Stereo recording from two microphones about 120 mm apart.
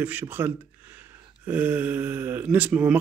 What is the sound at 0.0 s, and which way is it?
Speech, 15° right (ahead or behind).